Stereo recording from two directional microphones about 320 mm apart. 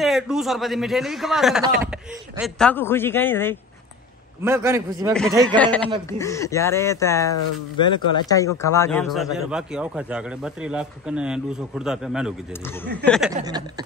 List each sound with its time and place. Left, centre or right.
0.0 s a man's voice: centre
4.4 s a man's voice: centre
5.6 s a man's voice: centre
13.4 s a man's voice: centre